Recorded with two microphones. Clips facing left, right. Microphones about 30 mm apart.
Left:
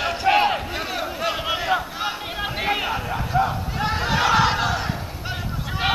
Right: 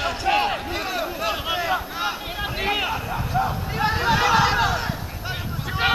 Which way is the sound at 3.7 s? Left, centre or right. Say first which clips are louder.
Right 3 dB; centre.